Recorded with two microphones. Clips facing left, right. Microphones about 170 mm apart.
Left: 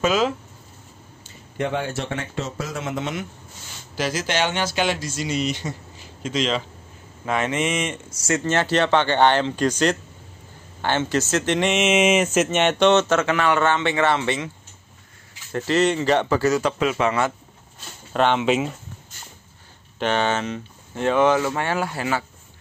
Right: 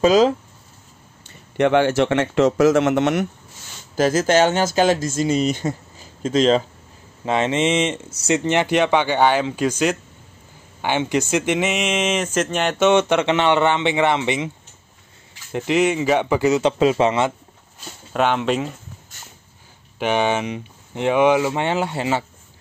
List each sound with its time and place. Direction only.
0.0 s speech: 35° right (ahead or behind)
1.6 s speech: 85° right
3.9 s speech: 45° right (ahead or behind)
7.2 s speech: 25° right (ahead or behind)
8.3 s speech: 15° right (ahead or behind)
15.5 s speech: 15° right (ahead or behind)
18.1 s speech: 5° right (ahead or behind)
20.0 s speech: 10° right (ahead or behind)